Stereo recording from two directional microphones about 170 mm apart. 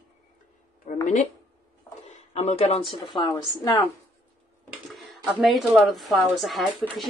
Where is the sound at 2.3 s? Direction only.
40° left (ahead or behind); by 3.3 s 25° left (ahead or behind).